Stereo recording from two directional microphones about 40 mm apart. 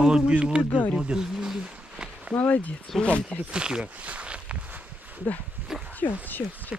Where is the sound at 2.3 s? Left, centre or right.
Left.